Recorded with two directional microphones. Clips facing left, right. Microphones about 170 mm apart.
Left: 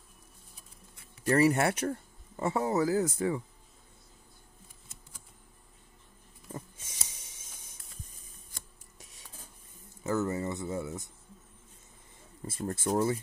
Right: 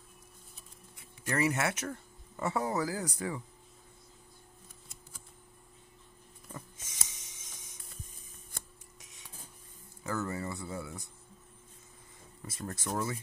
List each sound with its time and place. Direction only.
1.2 s speech: 35° left (ahead or behind)
6.5 s a sound: 30° left (ahead or behind)
10.0 s speech: 20° left (ahead or behind)
12.4 s speech: 30° left (ahead or behind)